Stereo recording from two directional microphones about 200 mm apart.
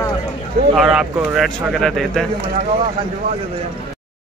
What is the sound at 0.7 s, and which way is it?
Speech, centre (ahead or behind).